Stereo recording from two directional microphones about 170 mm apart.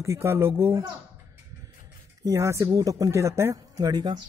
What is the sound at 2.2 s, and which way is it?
A man's voice, 15° right (ahead or behind).